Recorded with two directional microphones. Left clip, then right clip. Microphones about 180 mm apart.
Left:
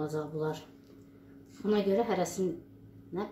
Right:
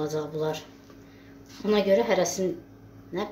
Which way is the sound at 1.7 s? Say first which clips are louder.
Right 7 dB; 40° left (ahead or behind).